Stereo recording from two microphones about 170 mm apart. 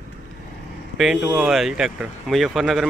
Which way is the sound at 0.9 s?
5° right (ahead or behind).